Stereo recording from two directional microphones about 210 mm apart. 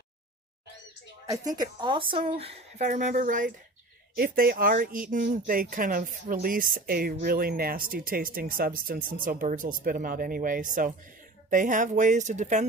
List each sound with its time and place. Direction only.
1.3 s speech: 15° right (ahead or behind); by 12.6 s 35° right (ahead or behind)